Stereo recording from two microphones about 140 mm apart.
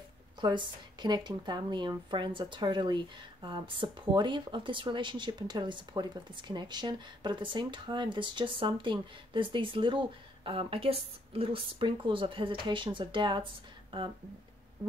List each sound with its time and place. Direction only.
0.4 s speech: 35° right (ahead or behind)